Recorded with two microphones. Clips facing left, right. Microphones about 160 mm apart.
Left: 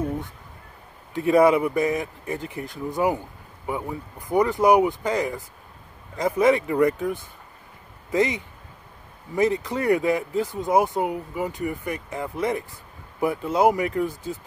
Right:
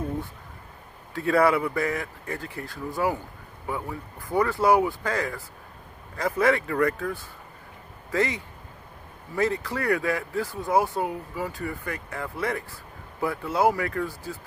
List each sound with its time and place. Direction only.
1.1 s speech: 20° left (ahead or behind)